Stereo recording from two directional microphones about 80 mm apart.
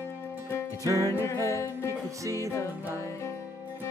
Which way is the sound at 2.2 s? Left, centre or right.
Right.